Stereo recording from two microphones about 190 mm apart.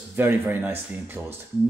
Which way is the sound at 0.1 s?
10° right (ahead or behind).